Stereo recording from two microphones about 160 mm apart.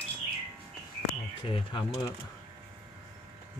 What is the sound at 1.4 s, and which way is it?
Speech, 35° left (ahead or behind).